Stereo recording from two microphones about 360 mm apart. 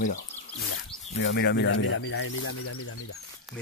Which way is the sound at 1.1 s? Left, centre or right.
Left.